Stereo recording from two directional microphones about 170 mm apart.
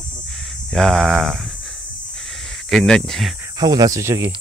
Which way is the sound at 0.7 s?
5° left (ahead or behind).